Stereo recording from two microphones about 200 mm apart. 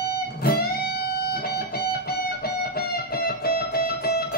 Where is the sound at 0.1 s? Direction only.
50° left (ahead or behind).